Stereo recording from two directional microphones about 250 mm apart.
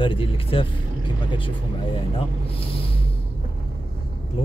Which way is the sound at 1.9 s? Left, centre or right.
Left.